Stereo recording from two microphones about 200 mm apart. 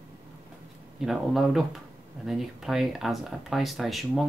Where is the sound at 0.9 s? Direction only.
Centre (ahead or behind).